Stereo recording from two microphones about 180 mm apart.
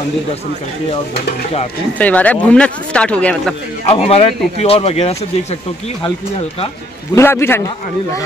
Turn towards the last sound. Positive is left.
turn(degrees=15)  # may be behind; listen again after turning